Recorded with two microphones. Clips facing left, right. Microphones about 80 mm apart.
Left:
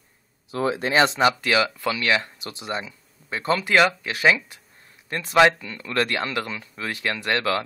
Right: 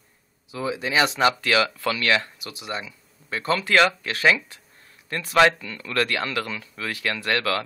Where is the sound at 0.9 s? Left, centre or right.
Left.